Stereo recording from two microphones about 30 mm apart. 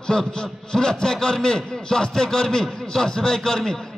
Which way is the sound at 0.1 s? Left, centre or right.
Centre.